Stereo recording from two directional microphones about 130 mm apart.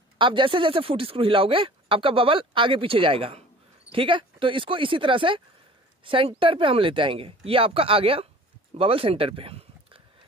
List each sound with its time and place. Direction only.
0.2 s speech: 40° right (ahead or behind)